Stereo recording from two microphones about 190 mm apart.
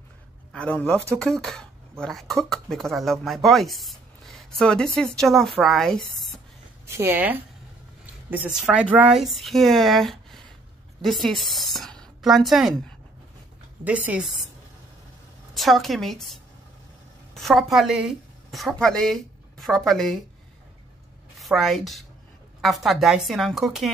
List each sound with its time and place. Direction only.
0.5 s speech: 5° left (ahead or behind)
6.9 s a woman's voice: 10° right (ahead or behind)
15.5 s a woman's voice: centre (ahead or behind)
21.4 s a woman's voice: centre (ahead or behind)